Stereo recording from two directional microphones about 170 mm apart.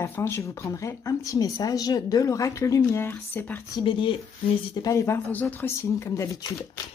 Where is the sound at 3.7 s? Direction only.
30° left (ahead or behind).